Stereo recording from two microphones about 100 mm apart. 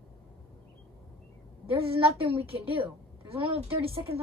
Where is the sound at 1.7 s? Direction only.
70° right (ahead or behind).